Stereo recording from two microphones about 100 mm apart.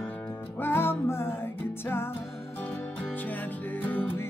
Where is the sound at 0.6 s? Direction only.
20° left (ahead or behind).